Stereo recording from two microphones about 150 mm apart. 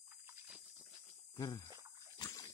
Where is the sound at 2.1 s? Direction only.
25° left (ahead or behind).